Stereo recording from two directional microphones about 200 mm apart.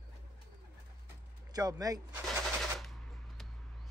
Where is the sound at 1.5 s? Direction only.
20° right (ahead or behind).